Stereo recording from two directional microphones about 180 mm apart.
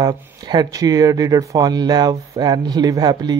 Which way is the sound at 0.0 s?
20° right (ahead or behind).